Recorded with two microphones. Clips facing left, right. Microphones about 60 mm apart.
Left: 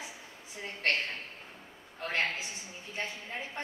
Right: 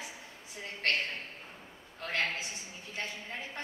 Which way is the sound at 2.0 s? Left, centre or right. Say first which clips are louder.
Left 1 dB; left.